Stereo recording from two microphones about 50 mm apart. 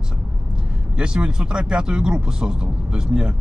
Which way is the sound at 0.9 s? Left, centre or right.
Centre.